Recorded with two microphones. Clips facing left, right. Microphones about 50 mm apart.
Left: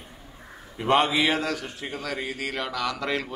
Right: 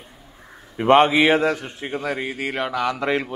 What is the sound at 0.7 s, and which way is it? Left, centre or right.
A man's voice, right.